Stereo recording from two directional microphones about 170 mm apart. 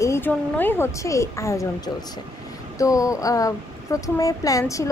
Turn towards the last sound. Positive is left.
turn(degrees=20)  # may be behind; listen again after turning